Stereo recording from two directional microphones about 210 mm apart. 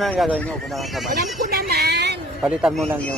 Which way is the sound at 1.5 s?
45° right (ahead or behind).